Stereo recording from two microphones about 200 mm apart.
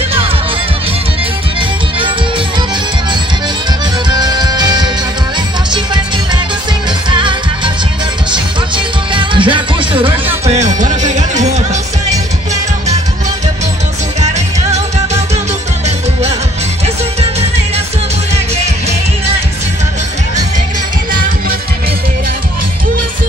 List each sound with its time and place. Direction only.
4.1 s music: 20° right (ahead or behind)
7.1 s music: 25° right (ahead or behind)
8.7 s music: 25° right (ahead or behind)
14.2 s music: 35° right (ahead or behind)